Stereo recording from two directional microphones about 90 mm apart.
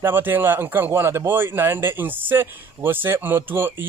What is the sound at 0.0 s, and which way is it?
Speech, 25° right (ahead or behind).